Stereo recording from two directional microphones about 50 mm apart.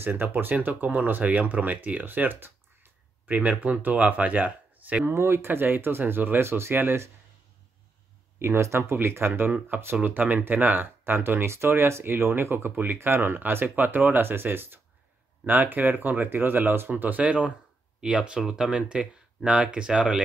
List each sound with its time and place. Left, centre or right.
0.0 s speech: right
3.3 s speech: right
5.0 s speech: right
8.4 s speech: right
9.0 s speech: right
10.0 s speech: right
13.7 s speech: right
16.9 s speech: right; by 20.2 s centre